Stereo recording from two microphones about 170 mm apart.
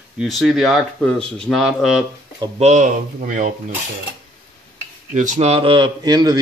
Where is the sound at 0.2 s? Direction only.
Centre (ahead or behind).